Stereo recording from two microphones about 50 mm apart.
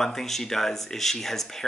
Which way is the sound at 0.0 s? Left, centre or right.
Centre.